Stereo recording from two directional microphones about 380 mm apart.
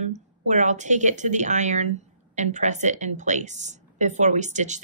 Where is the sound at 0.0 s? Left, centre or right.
Centre.